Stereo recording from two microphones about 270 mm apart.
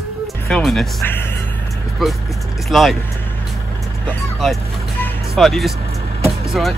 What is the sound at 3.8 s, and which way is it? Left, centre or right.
Vehicle, centre.